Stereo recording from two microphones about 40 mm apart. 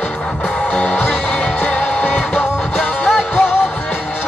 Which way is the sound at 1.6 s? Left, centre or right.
Left.